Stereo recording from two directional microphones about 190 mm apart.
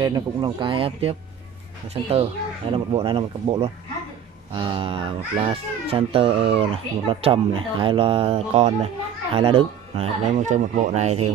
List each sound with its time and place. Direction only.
0.0 s a child's voice: 20° right (ahead or behind); by 11.1 s 35° right (ahead or behind)